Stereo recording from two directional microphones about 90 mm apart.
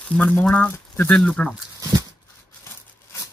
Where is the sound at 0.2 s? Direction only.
20° left (ahead or behind).